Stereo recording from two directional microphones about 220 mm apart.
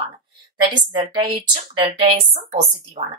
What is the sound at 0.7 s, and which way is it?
A woman's voice, 20° right (ahead or behind).